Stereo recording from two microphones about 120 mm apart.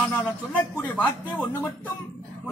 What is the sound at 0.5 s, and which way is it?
Speech, 10° left (ahead or behind).